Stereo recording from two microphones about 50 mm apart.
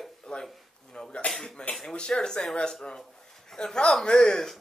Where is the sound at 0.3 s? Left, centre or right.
Centre.